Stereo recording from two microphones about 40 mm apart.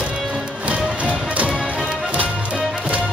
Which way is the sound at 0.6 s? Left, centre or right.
Right.